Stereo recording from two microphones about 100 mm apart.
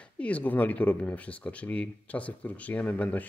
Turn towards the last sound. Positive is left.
turn(degrees=15)  # may be behind; listen again after turning